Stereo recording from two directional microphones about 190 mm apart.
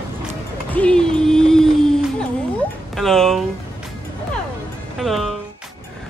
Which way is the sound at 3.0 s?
Centre (ahead or behind).